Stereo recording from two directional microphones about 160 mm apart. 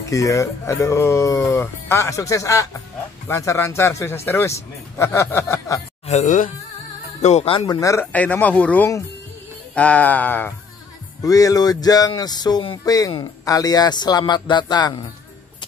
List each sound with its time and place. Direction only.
0.0 s a man's voice: 20° left (ahead or behind)
6.0 s speech: 50° left (ahead or behind)
7.6 s a man's voice: 20° left (ahead or behind)
11.2 s speech: 20° left (ahead or behind)